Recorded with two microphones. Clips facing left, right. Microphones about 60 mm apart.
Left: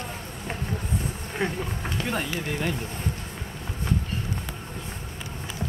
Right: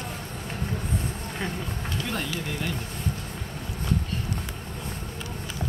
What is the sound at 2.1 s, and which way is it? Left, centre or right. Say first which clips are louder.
Speech: left 3 dB; left.